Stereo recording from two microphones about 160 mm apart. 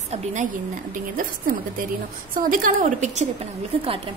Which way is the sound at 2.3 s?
60° right (ahead or behind).